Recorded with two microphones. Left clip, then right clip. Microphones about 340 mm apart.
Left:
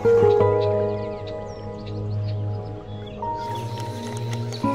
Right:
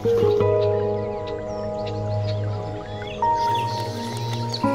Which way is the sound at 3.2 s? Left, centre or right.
Right.